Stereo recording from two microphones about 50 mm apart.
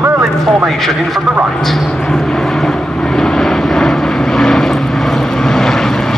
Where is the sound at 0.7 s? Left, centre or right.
Centre.